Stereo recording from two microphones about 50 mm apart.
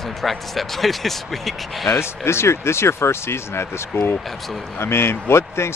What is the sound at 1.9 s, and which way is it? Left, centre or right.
Speech, left.